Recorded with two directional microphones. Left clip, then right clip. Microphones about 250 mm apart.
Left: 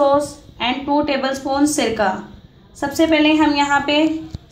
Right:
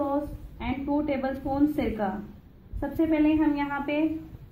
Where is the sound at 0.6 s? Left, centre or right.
Centre.